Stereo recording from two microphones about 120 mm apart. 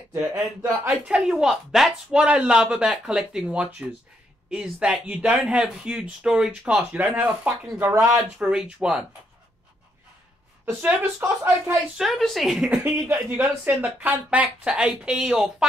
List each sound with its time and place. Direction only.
0.3 s speech: 15° right (ahead or behind)
1.0 s speech: 5° right (ahead or behind)
8.4 s speech: 5° right (ahead or behind)
10.6 s speech: 15° right (ahead or behind)
12.0 s speech: centre (ahead or behind)
12.8 s speech: 15° right (ahead or behind)